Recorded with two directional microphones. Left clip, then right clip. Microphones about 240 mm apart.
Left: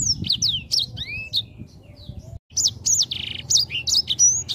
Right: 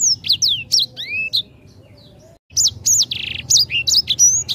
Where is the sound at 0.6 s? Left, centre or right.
Centre.